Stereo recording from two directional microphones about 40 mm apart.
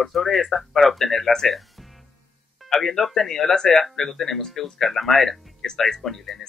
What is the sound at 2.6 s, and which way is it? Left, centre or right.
Speech, centre.